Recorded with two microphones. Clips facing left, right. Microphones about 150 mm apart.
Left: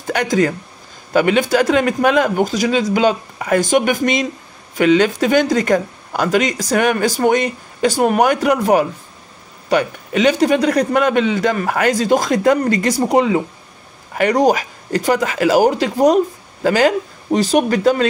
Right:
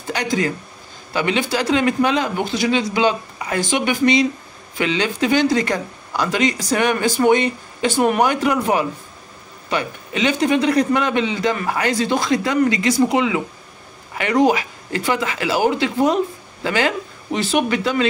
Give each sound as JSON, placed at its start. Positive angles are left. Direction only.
{"t": 0.0, "sound": "speech", "side_deg": 50}